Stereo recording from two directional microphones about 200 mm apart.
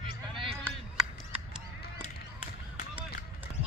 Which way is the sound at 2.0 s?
40° left (ahead or behind).